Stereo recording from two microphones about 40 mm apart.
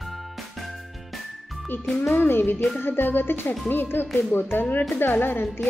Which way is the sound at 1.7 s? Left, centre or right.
Left.